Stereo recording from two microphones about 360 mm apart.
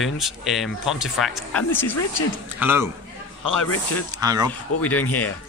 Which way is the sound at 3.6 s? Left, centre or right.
Left.